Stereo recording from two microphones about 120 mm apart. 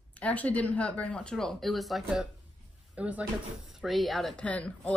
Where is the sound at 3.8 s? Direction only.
Centre (ahead or behind).